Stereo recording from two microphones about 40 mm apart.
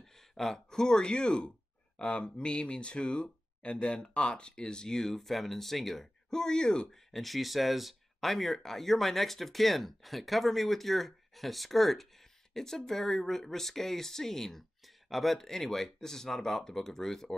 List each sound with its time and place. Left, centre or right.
0.0 s speech: centre
7.1 s speech: centre
15.0 s speech: centre
15.3 s speech: centre